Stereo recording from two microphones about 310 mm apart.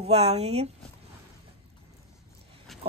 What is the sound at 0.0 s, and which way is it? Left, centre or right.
Speech, centre.